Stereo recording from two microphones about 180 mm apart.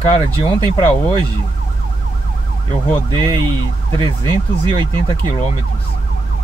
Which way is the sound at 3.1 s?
25° right (ahead or behind).